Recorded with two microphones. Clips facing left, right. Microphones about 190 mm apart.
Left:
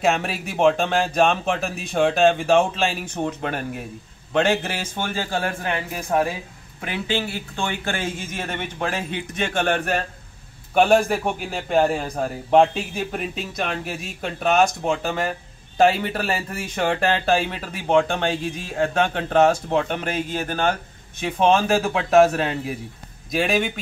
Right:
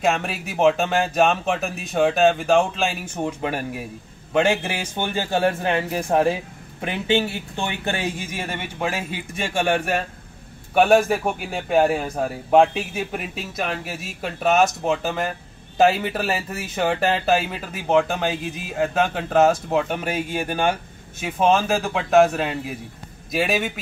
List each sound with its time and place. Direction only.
0.0 s a man's voice: centre (ahead or behind)